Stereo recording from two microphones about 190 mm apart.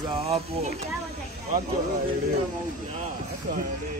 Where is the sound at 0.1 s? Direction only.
30° right (ahead or behind).